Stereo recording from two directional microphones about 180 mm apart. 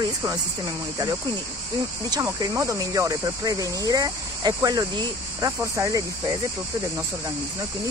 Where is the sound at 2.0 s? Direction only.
20° right (ahead or behind).